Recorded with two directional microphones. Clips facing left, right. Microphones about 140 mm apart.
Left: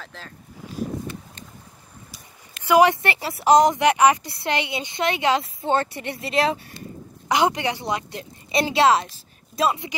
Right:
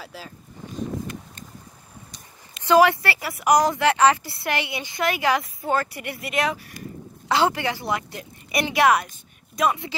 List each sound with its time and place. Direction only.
0.0 s speech: 5° right (ahead or behind)
2.0 s speech: 5° left (ahead or behind); by 6.8 s 30° left (ahead or behind)
7.2 s a woman's voice: 15° left (ahead or behind)